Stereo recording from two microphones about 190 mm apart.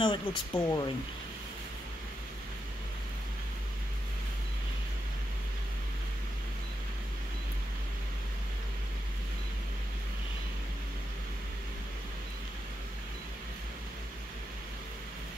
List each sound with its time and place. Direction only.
0.0 s speech: 25° left (ahead or behind)